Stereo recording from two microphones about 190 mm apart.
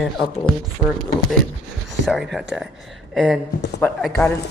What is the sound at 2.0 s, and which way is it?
A woman's voice, centre (ahead or behind).